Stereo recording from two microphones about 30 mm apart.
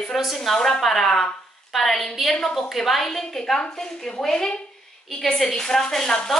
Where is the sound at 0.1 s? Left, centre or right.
Centre.